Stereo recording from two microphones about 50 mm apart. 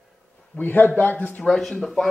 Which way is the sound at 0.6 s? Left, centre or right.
Left.